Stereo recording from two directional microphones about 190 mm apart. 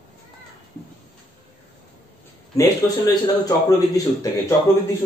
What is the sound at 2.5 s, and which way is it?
A man's voice, 20° left (ahead or behind).